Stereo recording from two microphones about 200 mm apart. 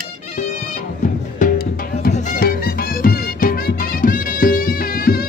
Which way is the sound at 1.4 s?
45° left (ahead or behind).